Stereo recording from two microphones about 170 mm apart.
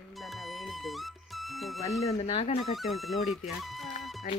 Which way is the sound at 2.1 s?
35° left (ahead or behind).